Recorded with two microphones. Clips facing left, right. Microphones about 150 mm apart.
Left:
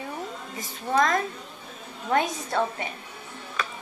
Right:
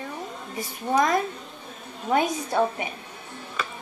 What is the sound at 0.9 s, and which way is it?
A woman's voice, 15° right (ahead or behind).